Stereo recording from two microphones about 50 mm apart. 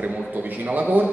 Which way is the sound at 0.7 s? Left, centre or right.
Right.